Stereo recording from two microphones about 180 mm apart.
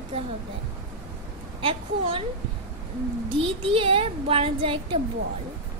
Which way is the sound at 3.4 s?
30° right (ahead or behind).